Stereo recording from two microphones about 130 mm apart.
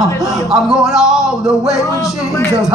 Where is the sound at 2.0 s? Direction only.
25° left (ahead or behind).